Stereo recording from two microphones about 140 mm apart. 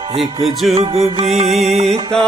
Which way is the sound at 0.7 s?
45° right (ahead or behind).